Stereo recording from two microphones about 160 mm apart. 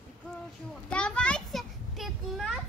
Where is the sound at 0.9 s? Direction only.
5° left (ahead or behind).